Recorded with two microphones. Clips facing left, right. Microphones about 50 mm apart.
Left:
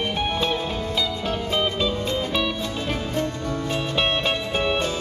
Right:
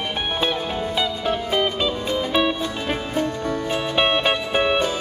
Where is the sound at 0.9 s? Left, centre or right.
Right.